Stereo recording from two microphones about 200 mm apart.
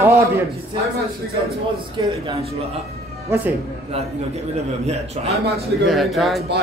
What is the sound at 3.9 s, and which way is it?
Speech, 30° right (ahead or behind).